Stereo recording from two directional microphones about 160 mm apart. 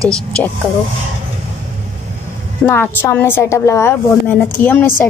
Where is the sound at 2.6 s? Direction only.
15° left (ahead or behind).